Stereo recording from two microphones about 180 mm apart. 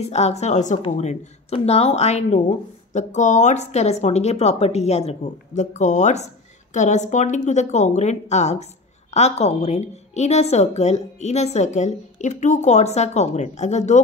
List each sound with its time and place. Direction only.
0.0 s speech: 35° left (ahead or behind)